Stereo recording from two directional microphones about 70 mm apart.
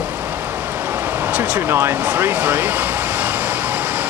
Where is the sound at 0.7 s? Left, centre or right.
Right.